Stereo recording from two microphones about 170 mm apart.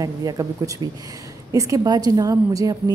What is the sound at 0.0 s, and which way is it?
A woman's voice, 20° right (ahead or behind).